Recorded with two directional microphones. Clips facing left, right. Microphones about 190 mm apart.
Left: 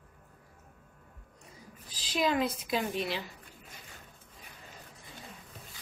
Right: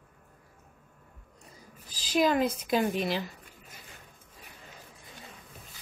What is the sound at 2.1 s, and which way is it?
Speech, 45° right (ahead or behind).